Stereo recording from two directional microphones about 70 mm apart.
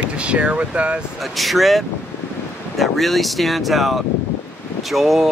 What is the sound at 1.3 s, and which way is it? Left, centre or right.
Speech, centre.